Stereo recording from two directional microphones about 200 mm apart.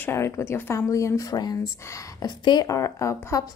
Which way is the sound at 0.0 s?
15° left (ahead or behind).